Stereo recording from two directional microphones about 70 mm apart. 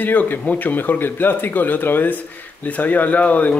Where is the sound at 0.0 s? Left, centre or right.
Left.